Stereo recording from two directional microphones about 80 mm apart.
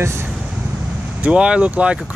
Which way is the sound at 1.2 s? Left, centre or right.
Centre.